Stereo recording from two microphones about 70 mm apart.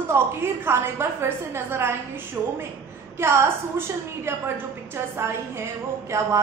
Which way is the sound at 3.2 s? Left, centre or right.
Right.